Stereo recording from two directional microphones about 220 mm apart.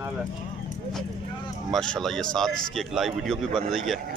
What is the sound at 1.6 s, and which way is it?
Speech, centre (ahead or behind).